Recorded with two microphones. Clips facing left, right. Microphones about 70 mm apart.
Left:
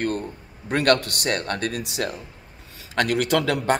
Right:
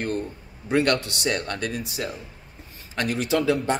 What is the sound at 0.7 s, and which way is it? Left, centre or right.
Speech, left.